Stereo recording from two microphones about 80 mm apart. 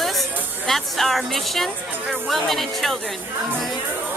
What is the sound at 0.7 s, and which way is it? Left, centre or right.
Speech, centre.